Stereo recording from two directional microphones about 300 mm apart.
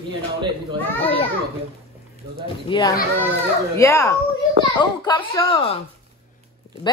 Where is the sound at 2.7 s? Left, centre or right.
Centre.